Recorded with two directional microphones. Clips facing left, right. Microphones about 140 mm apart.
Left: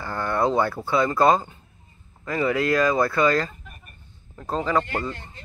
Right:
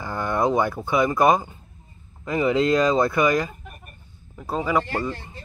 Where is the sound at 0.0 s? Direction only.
15° right (ahead or behind).